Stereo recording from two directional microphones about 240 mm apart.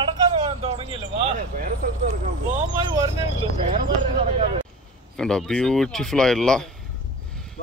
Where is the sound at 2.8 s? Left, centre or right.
Centre.